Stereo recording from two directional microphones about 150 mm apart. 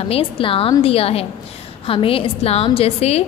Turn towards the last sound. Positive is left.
turn(degrees=45)  # may be behind; listen again after turning